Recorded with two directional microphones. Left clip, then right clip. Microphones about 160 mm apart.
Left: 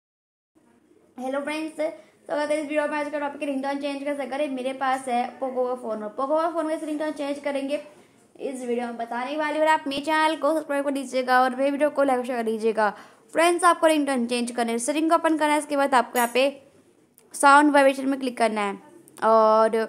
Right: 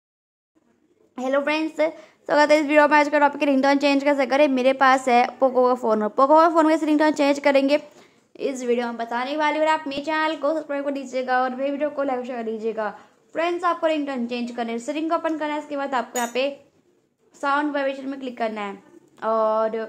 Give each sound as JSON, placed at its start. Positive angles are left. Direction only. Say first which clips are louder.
{"t": 1.1, "sound": "a woman's voice", "louder": "right 6 dB", "side_deg": -40}
{"t": 9.4, "sound": "a woman's voice", "louder": "right 1 dB", "side_deg": -5}
{"t": 9.8, "sound": "a woman's voice", "louder": "left 1 dB", "side_deg": 5}
{"t": 17.3, "sound": "a woman's voice", "louder": "left 7 dB", "side_deg": 35}